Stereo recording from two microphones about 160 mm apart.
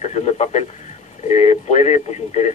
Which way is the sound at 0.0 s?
45° left (ahead or behind).